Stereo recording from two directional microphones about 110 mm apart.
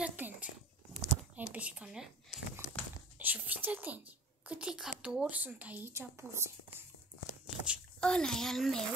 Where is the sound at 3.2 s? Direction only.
15° right (ahead or behind).